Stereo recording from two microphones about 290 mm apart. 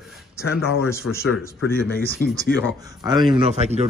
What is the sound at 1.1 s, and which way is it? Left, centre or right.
Speech, left.